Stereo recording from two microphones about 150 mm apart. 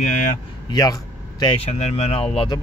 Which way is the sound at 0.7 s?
25° left (ahead or behind).